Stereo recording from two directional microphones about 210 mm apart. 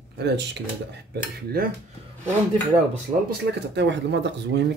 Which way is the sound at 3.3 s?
55° right (ahead or behind).